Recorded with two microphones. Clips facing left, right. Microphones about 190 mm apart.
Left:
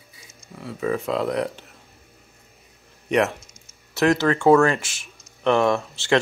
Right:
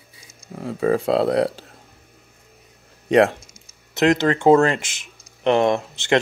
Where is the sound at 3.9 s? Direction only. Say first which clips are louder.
Right 2 dB; 20° right (ahead or behind).